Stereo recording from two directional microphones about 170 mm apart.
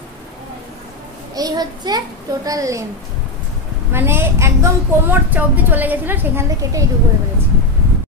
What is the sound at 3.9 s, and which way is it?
A woman's voice, 15° right (ahead or behind).